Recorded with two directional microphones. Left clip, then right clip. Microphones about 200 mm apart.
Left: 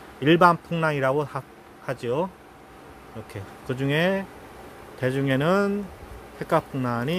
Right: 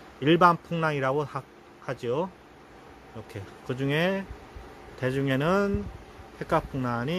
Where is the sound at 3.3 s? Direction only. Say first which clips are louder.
Left 3 dB; centre (ahead or behind).